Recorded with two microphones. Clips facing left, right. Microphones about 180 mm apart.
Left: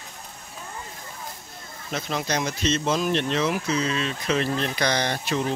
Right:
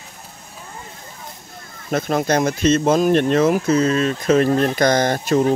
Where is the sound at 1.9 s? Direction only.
50° right (ahead or behind).